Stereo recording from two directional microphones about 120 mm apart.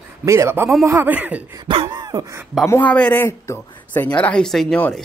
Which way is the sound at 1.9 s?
30° right (ahead or behind).